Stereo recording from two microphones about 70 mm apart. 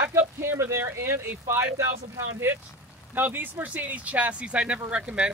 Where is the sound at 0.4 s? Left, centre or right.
Right.